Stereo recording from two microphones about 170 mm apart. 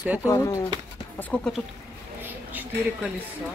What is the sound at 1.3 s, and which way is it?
Speech, 5° left (ahead or behind).